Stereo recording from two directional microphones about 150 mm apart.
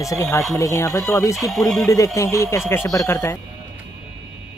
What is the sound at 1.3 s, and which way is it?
Speech, centre (ahead or behind).